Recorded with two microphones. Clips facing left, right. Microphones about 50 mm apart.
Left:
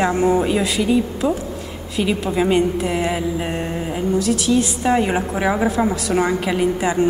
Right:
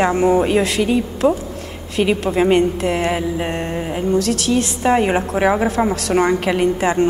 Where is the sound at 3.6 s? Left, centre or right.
Centre.